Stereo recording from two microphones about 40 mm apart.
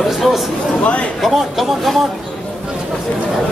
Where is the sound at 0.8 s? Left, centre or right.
Left.